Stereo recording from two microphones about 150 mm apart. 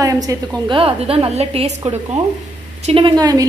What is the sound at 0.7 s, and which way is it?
A woman's voice, 40° right (ahead or behind).